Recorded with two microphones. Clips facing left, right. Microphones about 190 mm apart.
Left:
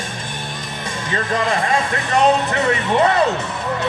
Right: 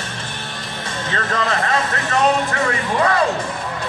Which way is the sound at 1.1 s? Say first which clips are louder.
Left 2 dB; 15° left (ahead or behind).